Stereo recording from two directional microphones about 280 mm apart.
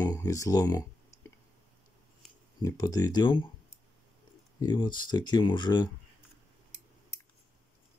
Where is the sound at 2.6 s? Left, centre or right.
Centre.